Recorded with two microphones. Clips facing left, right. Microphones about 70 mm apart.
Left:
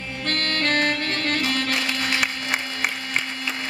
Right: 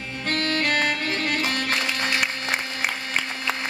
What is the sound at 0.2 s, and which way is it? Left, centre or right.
Music, centre.